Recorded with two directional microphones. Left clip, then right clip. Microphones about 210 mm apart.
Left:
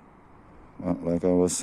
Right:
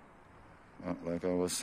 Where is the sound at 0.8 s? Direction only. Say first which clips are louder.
Left 10 dB; 30° left (ahead or behind).